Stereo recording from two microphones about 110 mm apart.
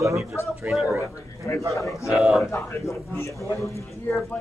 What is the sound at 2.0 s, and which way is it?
Speech, 10° right (ahead or behind).